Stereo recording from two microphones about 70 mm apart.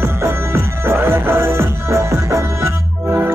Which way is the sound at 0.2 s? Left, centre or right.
Right.